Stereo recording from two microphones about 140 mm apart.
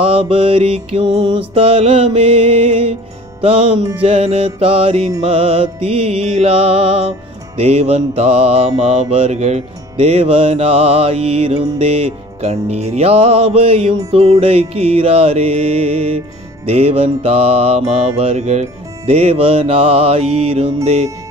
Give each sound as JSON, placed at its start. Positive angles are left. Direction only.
{"t": 0.0, "sound": "music", "side_deg": -40}